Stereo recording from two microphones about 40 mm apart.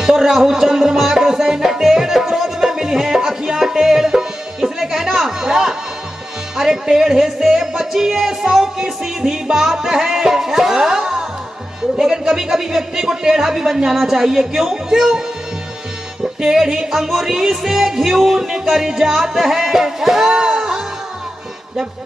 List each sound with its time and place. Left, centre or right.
0.0 s music: centre
16.3 s music: centre